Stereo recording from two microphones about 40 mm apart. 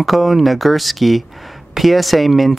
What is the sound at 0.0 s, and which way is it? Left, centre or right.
Speech, centre.